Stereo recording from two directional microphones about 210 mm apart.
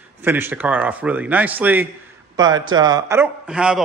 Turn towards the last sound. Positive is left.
turn(degrees=-5)  # may be behind; listen again after turning